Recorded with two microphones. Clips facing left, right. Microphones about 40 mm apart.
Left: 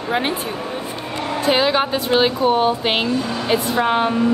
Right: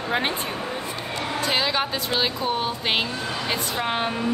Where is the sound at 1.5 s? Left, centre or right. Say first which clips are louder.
Left 8 dB; centre.